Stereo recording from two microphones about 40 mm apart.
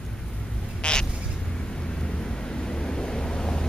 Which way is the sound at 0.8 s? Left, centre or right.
Left.